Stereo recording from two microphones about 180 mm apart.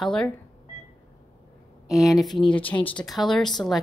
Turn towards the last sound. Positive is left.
turn(degrees=0)  # may be behind; listen again after turning